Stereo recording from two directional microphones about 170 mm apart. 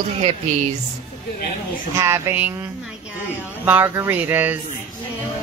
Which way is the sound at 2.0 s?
15° right (ahead or behind).